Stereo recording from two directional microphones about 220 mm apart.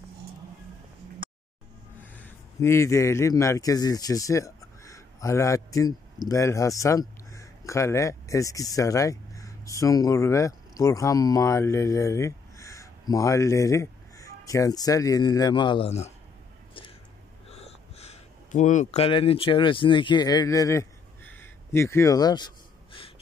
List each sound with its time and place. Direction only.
2.6 s speech: 10° left (ahead or behind); by 16.1 s 25° left (ahead or behind)
17.5 s speech: 30° left (ahead or behind)